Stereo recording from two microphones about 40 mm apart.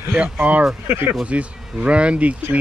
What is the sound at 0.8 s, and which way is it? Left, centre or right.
Speech, right.